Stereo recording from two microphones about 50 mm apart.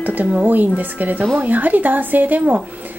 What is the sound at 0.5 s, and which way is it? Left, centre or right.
Speech, right.